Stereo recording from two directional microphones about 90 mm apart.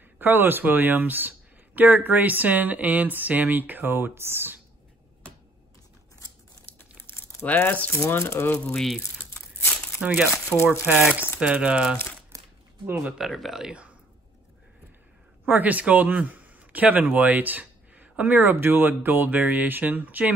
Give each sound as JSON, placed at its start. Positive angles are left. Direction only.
{"t": 0.2, "sound": "speech", "side_deg": -20}
{"t": 7.1, "sound": "crumpling", "side_deg": 25}
{"t": 7.9, "sound": "speech", "side_deg": 30}
{"t": 8.6, "sound": "speech", "side_deg": 5}
{"t": 10.0, "sound": "speech", "side_deg": -10}
{"t": 10.5, "sound": "speech", "side_deg": 10}
{"t": 10.9, "sound": "speech", "side_deg": -20}
{"t": 12.3, "sound": "a sound", "side_deg": -40}
{"t": 12.9, "sound": "speech", "side_deg": -10}
{"t": 15.4, "sound": "a man's voice", "side_deg": -20}